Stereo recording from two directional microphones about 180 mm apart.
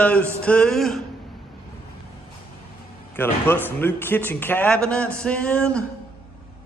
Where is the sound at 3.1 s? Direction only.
10° left (ahead or behind).